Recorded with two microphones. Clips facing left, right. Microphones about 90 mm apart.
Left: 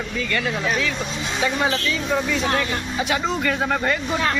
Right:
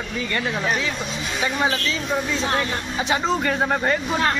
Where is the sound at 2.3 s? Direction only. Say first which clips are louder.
Left 1 dB; 30° right (ahead or behind).